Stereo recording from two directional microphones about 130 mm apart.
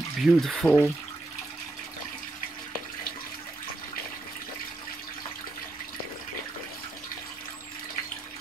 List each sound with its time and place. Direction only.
0.2 s speech: centre (ahead or behind)
0.7 s speech: 15° left (ahead or behind)